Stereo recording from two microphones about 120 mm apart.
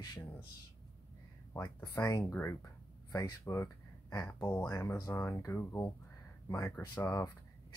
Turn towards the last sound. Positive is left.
turn(degrees=25)  # may be behind; listen again after turning